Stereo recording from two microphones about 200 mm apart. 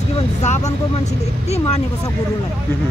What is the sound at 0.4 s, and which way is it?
Speech, 35° left (ahead or behind).